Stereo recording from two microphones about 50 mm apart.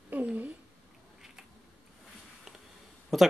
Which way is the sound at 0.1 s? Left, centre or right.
Right.